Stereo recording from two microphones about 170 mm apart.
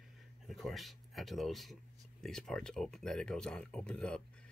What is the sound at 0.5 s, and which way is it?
Speech, centre (ahead or behind).